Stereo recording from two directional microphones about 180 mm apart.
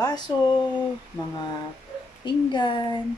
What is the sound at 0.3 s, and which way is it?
Speech, 25° left (ahead or behind).